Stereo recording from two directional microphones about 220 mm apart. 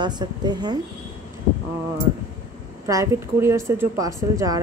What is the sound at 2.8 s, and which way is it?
Speech, 15° right (ahead or behind).